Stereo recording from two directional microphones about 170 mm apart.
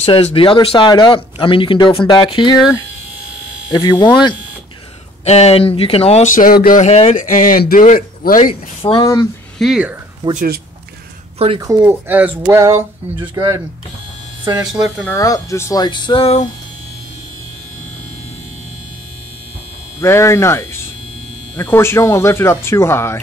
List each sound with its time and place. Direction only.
0.0 s speech: 35° left (ahead or behind)
3.7 s speech: 25° left (ahead or behind)
5.2 s speech: 40° left (ahead or behind); by 6.9 s 55° left (ahead or behind)
6.9 s speech: 40° left (ahead or behind); by 8.5 s 55° left (ahead or behind)
9.0 s speech: 20° left (ahead or behind)
9.6 s speech: 5° right (ahead or behind)
10.3 s speech: 60° right (ahead or behind)
11.3 s speech: 35° right (ahead or behind)
11.6 s speech: 15° right (ahead or behind)
14.7 s speech: centre (ahead or behind)
15.0 s speech: 20° left (ahead or behind); by 16.4 s 35° left (ahead or behind)
20.0 s speech: 15° left (ahead or behind)